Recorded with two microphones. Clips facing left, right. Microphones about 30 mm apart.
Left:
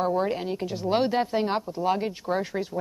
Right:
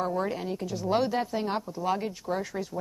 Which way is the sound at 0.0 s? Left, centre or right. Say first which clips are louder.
Left 4 dB; left.